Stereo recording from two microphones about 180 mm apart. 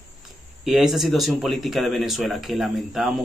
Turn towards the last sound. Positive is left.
turn(degrees=0)  # may be behind; listen again after turning